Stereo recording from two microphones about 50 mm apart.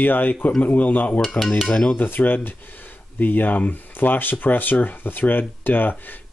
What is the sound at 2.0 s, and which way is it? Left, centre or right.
Speech, left.